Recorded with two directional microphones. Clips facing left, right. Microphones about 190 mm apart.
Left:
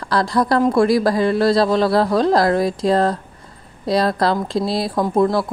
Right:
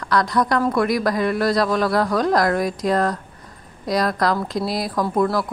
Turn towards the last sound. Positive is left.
turn(degrees=25)  # may be behind; listen again after turning